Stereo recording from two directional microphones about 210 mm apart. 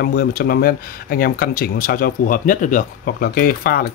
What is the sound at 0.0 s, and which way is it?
A man's voice, 45° left (ahead or behind).